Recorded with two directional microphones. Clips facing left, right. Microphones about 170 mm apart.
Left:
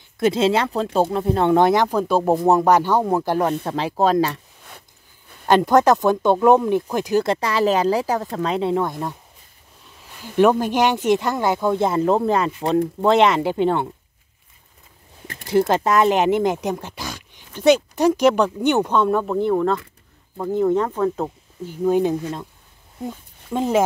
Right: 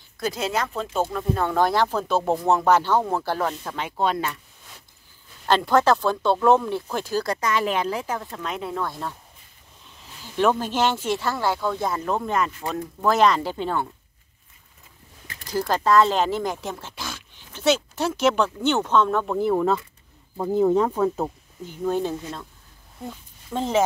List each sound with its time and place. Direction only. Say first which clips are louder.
0.2 s speech: left 8 dB; 25° left (ahead or behind)
3.6 s speech: left 6 dB; 35° left (ahead or behind)
5.7 s speech: left 3 dB; 15° left (ahead or behind)
7.3 s speech: left 5 dB; 35° left (ahead or behind); by 9.1 s 15° left (ahead or behind)
10.4 s speech: left 5 dB; 15° left (ahead or behind)
13.4 s speech: left 8 dB; 60° left (ahead or behind)
15.4 s speech: left 5 dB; 25° left (ahead or behind)
19.3 s speech: left 2 dB; 5° right (ahead or behind)
21.6 s a woman's voice: left 6 dB; 10° left (ahead or behind)